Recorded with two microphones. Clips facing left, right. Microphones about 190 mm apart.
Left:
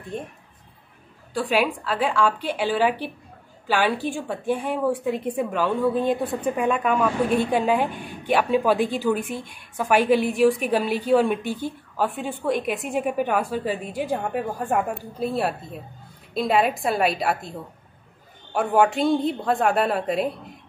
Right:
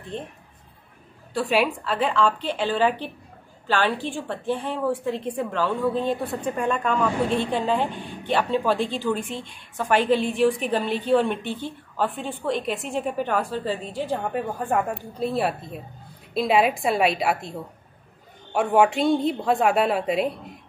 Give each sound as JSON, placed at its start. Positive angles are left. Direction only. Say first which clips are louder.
{"t": 0.1, "sound": "a woman's voice", "louder": "left 1 dB", "side_deg": 10}
{"t": 1.3, "sound": "a woman's voice", "louder": "even", "side_deg": 0}